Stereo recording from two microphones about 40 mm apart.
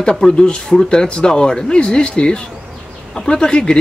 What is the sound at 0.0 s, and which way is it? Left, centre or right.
Speech, left.